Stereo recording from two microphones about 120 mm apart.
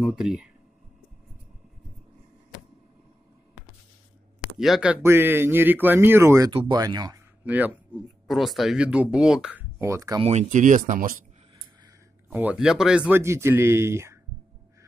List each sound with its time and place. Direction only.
0.0 s speech: 5° right (ahead or behind)
4.6 s speech: 5° right (ahead or behind)
5.0 s speech: 20° right (ahead or behind)
6.7 s speech: 35° right (ahead or behind)
7.4 s speech: 10° right (ahead or behind)
8.3 s speech: centre (ahead or behind); by 10.2 s 25° right (ahead or behind)
10.2 s speech: 80° right
12.3 s speech: 15° right (ahead or behind)
12.5 s speech: 5° right (ahead or behind)
13.2 s speech: 20° right (ahead or behind)